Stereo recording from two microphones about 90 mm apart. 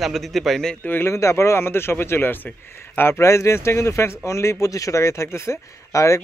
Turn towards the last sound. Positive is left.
turn(degrees=35)  # may be behind; listen again after turning